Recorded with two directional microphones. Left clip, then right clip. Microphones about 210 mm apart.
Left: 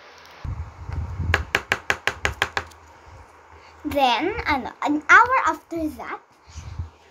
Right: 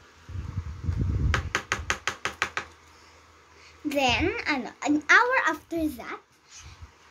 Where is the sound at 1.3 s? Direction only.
30° left (ahead or behind).